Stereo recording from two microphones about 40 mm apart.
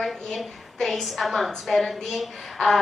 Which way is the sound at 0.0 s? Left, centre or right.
Centre.